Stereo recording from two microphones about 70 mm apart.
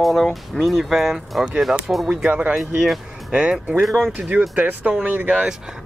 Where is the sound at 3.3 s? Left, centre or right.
Centre.